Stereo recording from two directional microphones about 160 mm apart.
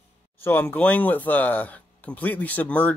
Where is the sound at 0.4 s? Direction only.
10° left (ahead or behind).